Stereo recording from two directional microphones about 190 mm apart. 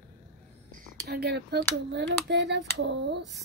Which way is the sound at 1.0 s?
60° right (ahead or behind).